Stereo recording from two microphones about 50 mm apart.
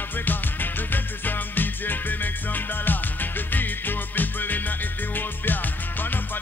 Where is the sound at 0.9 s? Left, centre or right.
Left.